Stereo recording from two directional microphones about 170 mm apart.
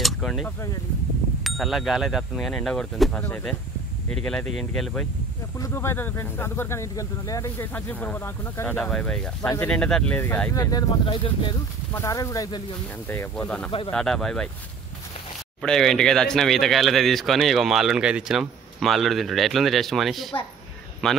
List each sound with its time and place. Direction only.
0.0 s a sound: centre (ahead or behind)
1.4 s speech: centre (ahead or behind)
5.6 s speech: 15° left (ahead or behind)
11.9 s speech: 20° left (ahead or behind)
13.7 s speech: 30° left (ahead or behind)
13.9 s speech: 5° left (ahead or behind)
15.6 s speech: 5° left (ahead or behind)